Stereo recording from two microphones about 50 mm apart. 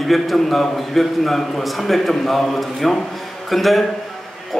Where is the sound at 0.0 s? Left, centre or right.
Centre.